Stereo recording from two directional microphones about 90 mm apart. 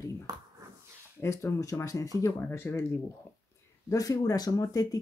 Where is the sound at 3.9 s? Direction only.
40° left (ahead or behind).